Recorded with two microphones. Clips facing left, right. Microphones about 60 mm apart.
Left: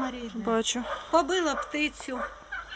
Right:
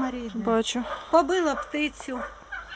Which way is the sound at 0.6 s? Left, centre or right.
Centre.